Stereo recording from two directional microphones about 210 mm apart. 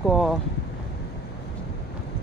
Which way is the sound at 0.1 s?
Centre (ahead or behind).